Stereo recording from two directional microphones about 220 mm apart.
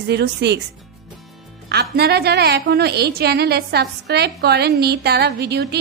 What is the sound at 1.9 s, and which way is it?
A woman's voice, 45° right (ahead or behind).